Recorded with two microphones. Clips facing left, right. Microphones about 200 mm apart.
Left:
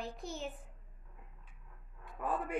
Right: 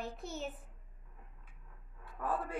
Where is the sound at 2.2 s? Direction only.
15° left (ahead or behind).